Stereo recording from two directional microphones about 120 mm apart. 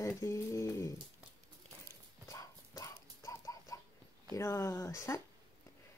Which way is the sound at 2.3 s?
25° left (ahead or behind).